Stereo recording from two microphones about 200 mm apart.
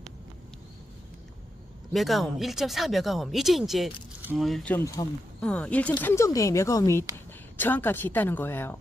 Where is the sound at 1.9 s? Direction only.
Centre (ahead or behind).